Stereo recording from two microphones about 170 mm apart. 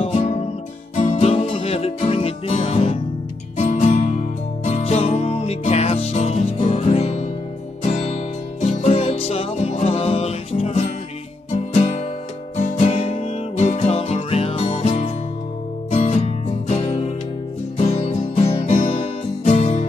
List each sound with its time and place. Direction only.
0.0 s music: 35° left (ahead or behind)